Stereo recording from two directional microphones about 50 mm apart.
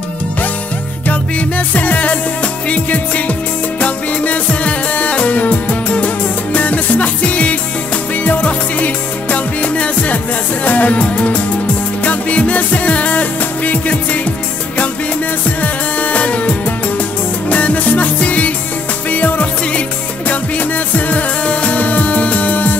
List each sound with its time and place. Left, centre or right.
1.7 s music: left
15.6 s music: left